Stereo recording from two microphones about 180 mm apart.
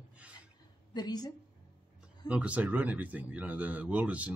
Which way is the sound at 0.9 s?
25° left (ahead or behind).